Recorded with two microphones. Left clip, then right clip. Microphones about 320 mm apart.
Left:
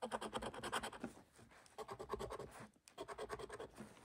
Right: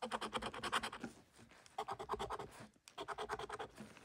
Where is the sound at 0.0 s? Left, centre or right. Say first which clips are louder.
Right 2 dB; centre.